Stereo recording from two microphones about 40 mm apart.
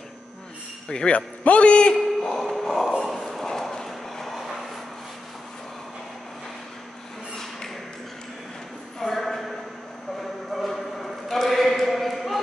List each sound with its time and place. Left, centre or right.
0.8 s a man's voice: left
1.1 s a man's voice: left
2.1 s speech: centre
3.0 s a sound: centre
9.0 s a sound: centre
10.5 s basketball bounce: centre